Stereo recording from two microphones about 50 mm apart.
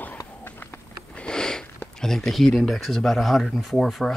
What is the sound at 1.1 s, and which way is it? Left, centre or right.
Sniff, centre.